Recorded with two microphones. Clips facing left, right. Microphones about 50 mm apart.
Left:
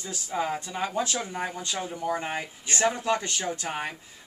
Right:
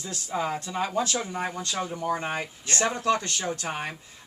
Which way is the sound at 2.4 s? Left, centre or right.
Centre.